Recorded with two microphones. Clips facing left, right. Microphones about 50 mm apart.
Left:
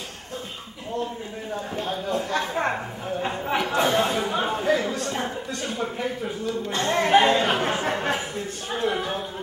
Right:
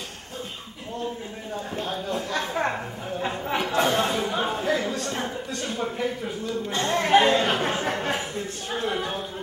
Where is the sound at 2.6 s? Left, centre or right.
Centre.